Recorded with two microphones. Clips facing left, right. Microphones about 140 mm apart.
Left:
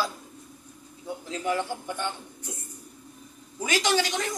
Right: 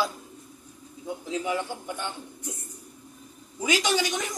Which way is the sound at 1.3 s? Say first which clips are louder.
Left 1 dB; 15° right (ahead or behind).